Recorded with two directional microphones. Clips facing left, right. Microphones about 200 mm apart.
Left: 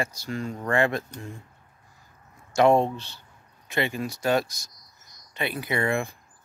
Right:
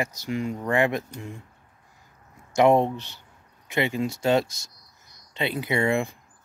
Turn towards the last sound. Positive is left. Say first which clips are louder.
# right 2 dB
turn(degrees=-20)  # may be behind; listen again after turning